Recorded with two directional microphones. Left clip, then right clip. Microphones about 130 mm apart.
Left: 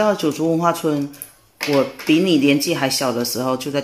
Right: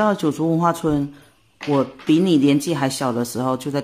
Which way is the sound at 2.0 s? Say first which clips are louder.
Right 1 dB; 20° right (ahead or behind).